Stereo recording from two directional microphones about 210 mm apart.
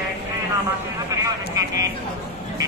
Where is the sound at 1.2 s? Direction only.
15° right (ahead or behind).